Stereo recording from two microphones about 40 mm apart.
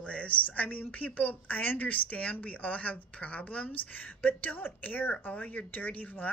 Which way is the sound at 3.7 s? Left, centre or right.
Left.